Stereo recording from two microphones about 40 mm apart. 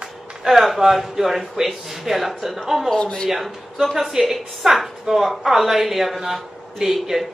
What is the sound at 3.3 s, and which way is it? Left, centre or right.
A woman's voice, centre.